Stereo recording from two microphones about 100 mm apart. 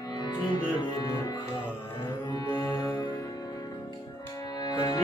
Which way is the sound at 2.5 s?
40° left (ahead or behind).